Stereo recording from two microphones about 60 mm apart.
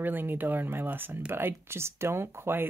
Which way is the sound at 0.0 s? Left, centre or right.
Right.